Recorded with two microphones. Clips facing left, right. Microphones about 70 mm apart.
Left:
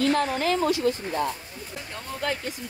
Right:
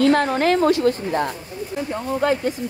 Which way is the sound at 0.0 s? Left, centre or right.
Right.